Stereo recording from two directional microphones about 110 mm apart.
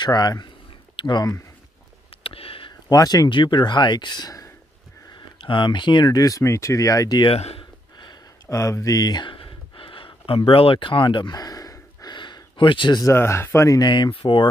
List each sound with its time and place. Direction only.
0.0 s speech: 35° left (ahead or behind)
2.2 s a sound: 60° left (ahead or behind)
2.9 s speech: 35° left (ahead or behind)
5.1 s speech: 45° left (ahead or behind); by 7.2 s 30° left (ahead or behind)
7.3 s speech: 75° left (ahead or behind)
8.5 s a sound: 30° left (ahead or behind); by 13.0 s 45° left (ahead or behind)
13.0 s speech: 25° left (ahead or behind)
13.7 s speech: 40° left (ahead or behind)